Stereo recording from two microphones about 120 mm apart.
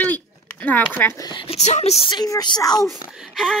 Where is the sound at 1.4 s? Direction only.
65° left (ahead or behind).